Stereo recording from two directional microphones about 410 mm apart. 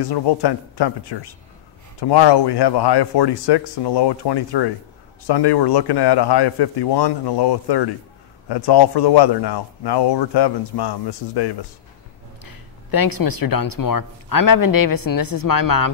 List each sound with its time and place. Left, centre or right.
0.1 s speech: left
12.4 s speech: left